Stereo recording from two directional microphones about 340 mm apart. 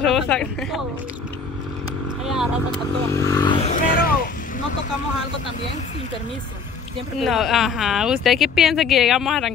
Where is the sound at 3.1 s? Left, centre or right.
Centre; by 4.3 s left.